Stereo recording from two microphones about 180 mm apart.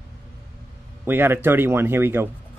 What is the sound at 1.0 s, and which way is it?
Speech, 10° right (ahead or behind).